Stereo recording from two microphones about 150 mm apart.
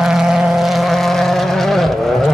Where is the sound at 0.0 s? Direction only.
5° right (ahead or behind).